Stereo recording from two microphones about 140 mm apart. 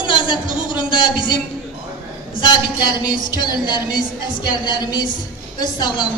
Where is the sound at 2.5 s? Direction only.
30° left (ahead or behind).